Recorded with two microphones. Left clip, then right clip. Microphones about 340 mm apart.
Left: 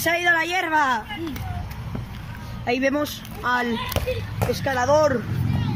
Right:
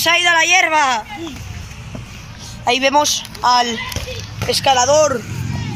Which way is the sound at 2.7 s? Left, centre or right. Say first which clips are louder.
Right 9 dB; right.